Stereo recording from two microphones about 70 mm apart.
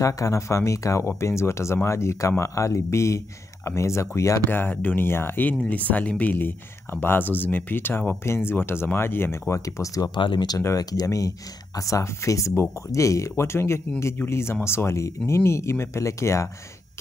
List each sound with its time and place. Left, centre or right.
0.0 s speech: left
4.5 s speech: left
6.3 s speech: left
9.5 s speech: left
11.1 s speech: left